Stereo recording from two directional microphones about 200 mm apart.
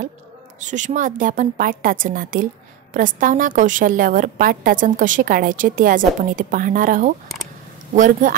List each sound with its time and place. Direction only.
0.6 s a woman's voice: 40° right (ahead or behind)